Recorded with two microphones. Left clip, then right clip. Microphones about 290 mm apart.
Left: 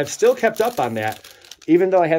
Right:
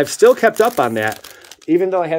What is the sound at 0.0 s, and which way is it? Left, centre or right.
Speech, centre.